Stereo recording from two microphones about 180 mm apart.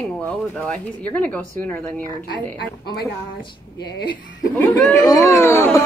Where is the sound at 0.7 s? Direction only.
10° left (ahead or behind).